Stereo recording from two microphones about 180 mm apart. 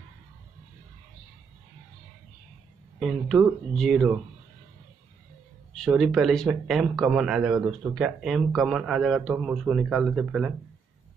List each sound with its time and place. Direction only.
3.0 s speech: centre (ahead or behind)
5.8 s speech: centre (ahead or behind)